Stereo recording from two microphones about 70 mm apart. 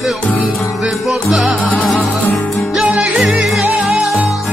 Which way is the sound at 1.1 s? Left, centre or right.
Centre.